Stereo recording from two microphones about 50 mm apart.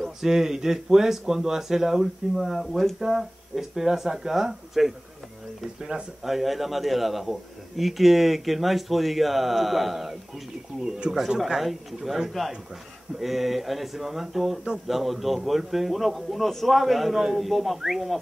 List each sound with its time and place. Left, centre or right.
0.0 s speech: centre
6.2 s a man's voice: centre
10.8 s a man's voice: centre